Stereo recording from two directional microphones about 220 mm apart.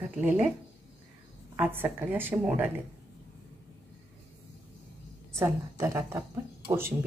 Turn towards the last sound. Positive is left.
turn(degrees=-10)  # may be behind; listen again after turning